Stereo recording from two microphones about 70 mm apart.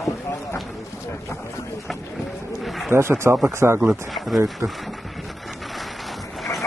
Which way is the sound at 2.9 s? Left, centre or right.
Right.